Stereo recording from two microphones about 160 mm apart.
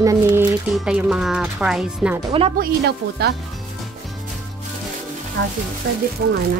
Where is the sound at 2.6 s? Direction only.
90° right.